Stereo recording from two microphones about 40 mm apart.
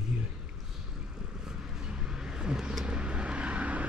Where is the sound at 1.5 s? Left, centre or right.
Centre.